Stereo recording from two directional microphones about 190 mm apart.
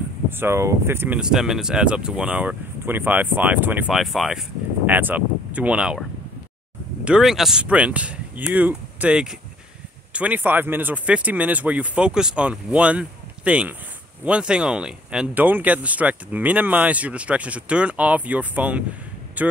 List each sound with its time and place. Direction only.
0.3 s speech: 10° right (ahead or behind)
7.1 s speech: centre (ahead or behind)